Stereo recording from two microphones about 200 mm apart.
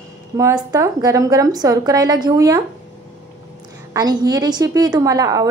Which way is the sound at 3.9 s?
20° right (ahead or behind).